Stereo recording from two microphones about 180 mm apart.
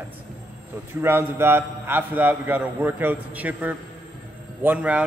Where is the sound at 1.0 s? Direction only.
15° right (ahead or behind).